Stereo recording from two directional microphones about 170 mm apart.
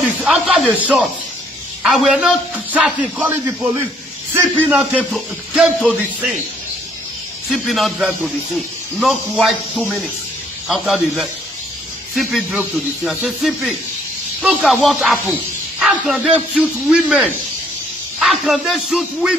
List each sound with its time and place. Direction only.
0.0 s a man's voice: 5° right (ahead or behind)
4.7 s speech: 10° right (ahead or behind)
7.5 s a man's voice: centre (ahead or behind)